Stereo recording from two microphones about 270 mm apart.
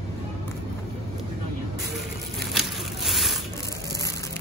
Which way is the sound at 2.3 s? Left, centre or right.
Centre.